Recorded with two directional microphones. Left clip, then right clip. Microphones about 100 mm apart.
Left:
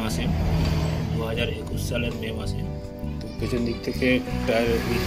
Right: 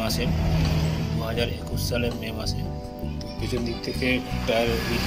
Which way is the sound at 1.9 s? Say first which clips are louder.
Right 1 dB; 5° left (ahead or behind).